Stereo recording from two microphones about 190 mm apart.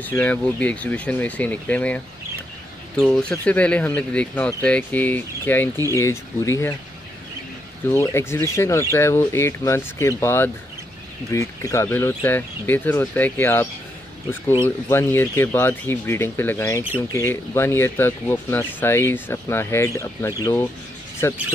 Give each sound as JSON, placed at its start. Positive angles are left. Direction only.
{"t": 0.0, "sound": "speech", "side_deg": 10}
{"t": 3.0, "sound": "speech", "side_deg": 5}
{"t": 7.9, "sound": "speech", "side_deg": 15}
{"t": 14.9, "sound": "speech", "side_deg": 10}